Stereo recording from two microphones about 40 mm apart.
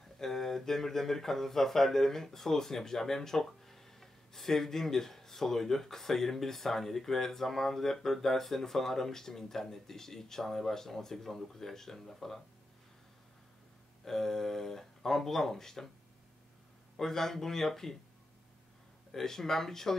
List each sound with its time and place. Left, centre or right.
0.2 s speech: centre
14.0 s speech: centre
16.9 s speech: centre
19.1 s speech: centre